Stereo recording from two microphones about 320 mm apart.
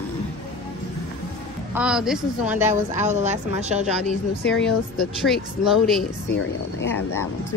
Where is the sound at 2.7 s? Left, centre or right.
Right.